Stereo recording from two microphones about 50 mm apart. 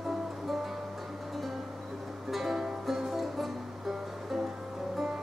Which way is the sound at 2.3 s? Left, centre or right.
Centre.